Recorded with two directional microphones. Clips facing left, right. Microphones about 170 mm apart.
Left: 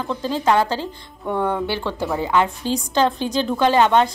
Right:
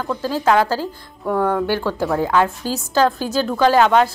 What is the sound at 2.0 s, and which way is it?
Speech, 10° left (ahead or behind).